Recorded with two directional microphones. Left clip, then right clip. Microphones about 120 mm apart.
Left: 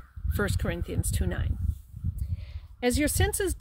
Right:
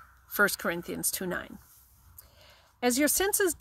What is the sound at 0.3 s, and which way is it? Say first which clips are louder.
Speech: right 5 dB; 25° left (ahead or behind).